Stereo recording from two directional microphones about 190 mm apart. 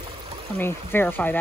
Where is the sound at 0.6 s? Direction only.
10° left (ahead or behind).